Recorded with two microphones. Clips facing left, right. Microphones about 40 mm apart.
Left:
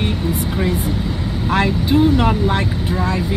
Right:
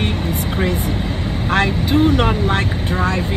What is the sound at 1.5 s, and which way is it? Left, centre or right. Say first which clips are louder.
Speech: even; right.